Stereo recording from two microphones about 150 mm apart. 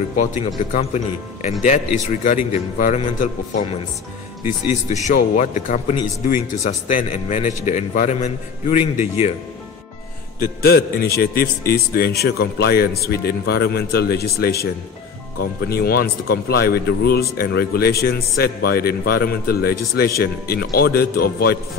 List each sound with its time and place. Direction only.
0.1 s a man's voice: 55° left (ahead or behind)
4.5 s speech: 15° right (ahead or behind)
5.0 s a man's voice: 55° left (ahead or behind)
10.4 s speech: 85° left